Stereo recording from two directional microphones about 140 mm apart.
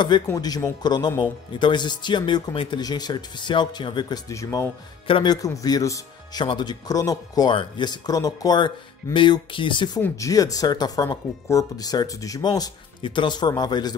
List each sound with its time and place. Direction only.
0.3 s a man's voice: 25° left (ahead or behind)
4.3 s speech: 25° left (ahead or behind)
5.0 s a man's voice: 35° left (ahead or behind)